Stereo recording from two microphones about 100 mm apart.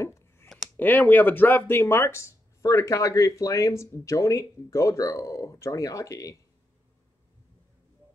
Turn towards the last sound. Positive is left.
turn(degrees=35)  # may be behind; listen again after turning